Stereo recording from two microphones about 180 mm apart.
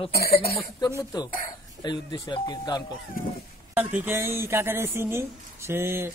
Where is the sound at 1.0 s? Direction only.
20° left (ahead or behind).